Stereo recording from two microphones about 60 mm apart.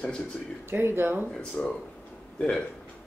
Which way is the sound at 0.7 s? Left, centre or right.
Right.